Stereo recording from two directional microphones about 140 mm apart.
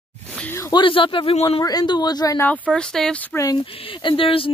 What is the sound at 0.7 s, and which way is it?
Speech, 35° left (ahead or behind).